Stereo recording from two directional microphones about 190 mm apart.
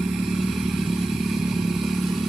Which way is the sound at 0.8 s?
Centre (ahead or behind).